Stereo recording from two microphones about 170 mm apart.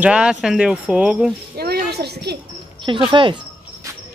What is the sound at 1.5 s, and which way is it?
Speech, 65° right (ahead or behind).